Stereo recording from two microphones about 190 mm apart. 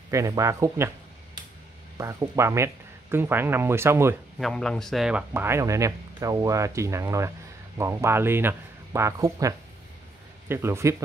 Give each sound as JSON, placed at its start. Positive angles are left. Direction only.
{"t": 0.1, "sound": "speech", "side_deg": -15}
{"t": 2.0, "sound": "speech", "side_deg": -15}
{"t": 4.4, "sound": "speech", "side_deg": 5}